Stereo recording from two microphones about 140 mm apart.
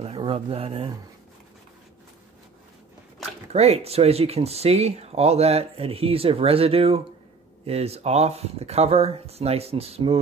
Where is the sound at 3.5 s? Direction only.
50° right (ahead or behind).